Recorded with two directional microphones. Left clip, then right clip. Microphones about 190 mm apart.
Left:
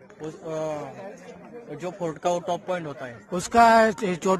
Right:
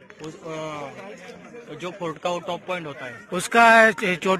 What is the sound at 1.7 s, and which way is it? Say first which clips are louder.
A man's voice: even; 60° left (ahead or behind).